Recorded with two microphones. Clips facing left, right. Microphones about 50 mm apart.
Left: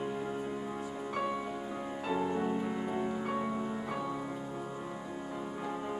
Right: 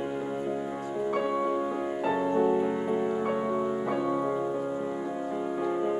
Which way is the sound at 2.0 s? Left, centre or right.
Centre.